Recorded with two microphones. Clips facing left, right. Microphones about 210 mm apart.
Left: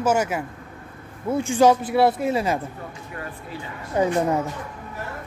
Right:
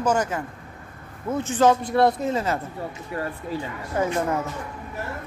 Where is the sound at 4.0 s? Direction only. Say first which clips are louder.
Left 3 dB; 20° left (ahead or behind).